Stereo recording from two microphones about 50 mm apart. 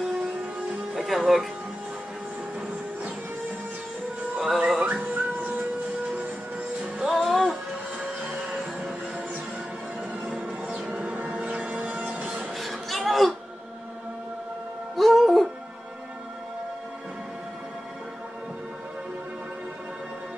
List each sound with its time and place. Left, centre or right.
0.0 s music: centre
0.9 s music: centre
4.4 s music: centre
5.1 s music: right
7.0 s music: centre
8.0 s music: centre
10.2 s a sound: right
12.5 s chatter: centre
15.0 s music: centre